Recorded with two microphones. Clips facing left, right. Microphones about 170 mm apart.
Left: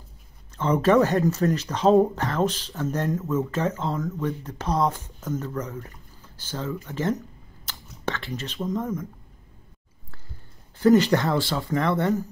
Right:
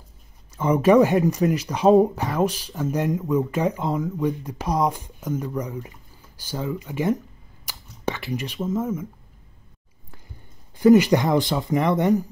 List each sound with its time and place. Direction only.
0.6 s speech: 10° right (ahead or behind)
7.6 s a sound: 10° right (ahead or behind)
10.8 s speech: 10° right (ahead or behind)